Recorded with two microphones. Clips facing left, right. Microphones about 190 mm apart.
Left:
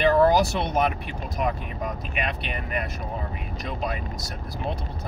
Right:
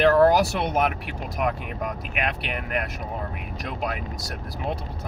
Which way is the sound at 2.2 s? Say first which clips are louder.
Right 2 dB; 70° right (ahead or behind).